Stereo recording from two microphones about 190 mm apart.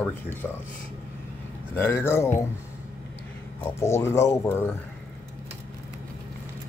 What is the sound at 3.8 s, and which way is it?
Speech, 15° left (ahead or behind).